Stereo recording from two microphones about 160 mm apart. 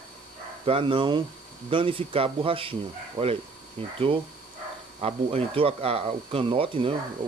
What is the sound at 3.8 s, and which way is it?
Speech, 35° right (ahead or behind).